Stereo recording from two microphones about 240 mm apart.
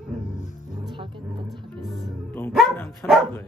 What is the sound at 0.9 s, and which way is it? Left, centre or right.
Roaring cats, centre.